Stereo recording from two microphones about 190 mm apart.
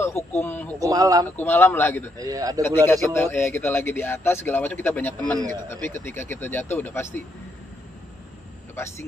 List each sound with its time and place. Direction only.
0.0 s speech: 10° left (ahead or behind)
0.7 s speech: 20° right (ahead or behind)
1.3 s speech: 10° left (ahead or behind)
2.1 s a man's voice: 20° right (ahead or behind)
2.6 s speech: 10° left (ahead or behind)
8.7 s speech: 15° left (ahead or behind)